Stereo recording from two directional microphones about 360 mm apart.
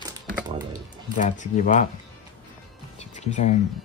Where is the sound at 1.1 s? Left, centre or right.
Left.